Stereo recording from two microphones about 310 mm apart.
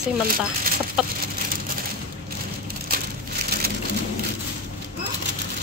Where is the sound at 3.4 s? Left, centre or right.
Right.